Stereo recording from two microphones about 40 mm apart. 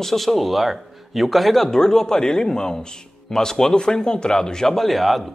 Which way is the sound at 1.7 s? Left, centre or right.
Centre.